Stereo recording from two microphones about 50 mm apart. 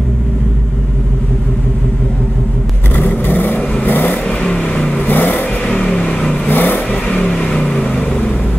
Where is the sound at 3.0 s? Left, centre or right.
Left.